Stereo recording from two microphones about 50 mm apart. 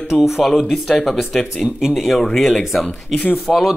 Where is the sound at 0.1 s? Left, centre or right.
Centre.